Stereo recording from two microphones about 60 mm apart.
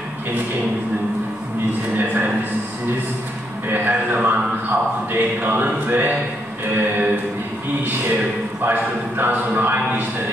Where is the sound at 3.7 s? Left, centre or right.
Right.